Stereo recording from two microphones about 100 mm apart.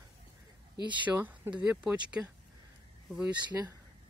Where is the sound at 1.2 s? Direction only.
15° right (ahead or behind).